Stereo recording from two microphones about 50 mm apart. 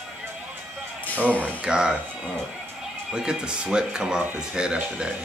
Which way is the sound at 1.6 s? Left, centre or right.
Centre.